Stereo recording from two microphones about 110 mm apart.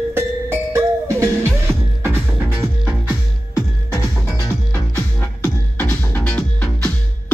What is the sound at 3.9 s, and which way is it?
Music, 30° left (ahead or behind).